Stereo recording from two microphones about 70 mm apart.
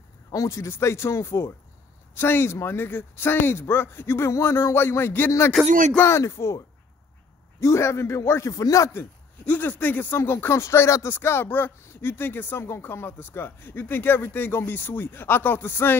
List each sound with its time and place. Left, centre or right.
0.3 s speech: left
6.0 s speech: left
7.6 s speech: left
9.4 s speech: left